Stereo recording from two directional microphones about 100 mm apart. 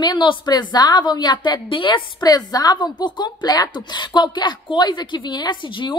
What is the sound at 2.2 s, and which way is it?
A woman's voice, 40° left (ahead or behind).